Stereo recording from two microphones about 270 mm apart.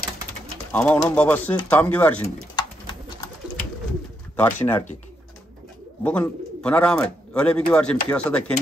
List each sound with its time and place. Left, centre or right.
0.7 s speech: centre
2.5 s bird: centre
4.4 s speech: centre
6.0 s speech: centre